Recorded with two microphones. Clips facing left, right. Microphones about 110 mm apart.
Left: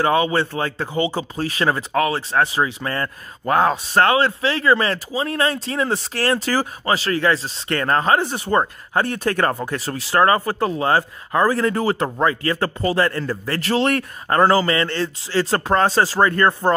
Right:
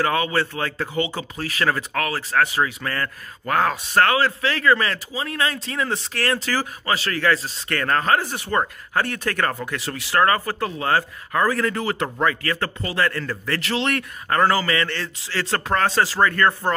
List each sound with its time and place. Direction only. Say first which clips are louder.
0.0 s speech: left 4 dB; 25° left (ahead or behind)
13.7 s speech: left 6 dB; 40° left (ahead or behind); by 16.7 s 25° left (ahead or behind)